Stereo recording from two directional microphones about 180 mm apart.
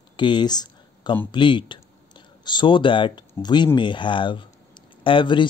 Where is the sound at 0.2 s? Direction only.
25° left (ahead or behind).